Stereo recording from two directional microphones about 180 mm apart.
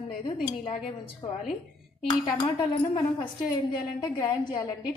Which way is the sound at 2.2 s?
30° left (ahead or behind).